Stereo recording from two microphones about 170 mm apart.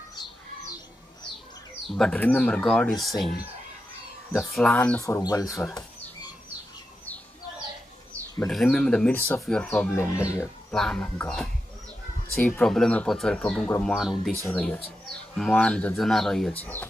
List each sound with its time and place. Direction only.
2.0 s speech: 5° left (ahead or behind)
4.4 s speech: centre (ahead or behind)
5.0 s speech: 20° left (ahead or behind)
8.5 s speech: 5° left (ahead or behind)
10.4 s speech: 5° left (ahead or behind)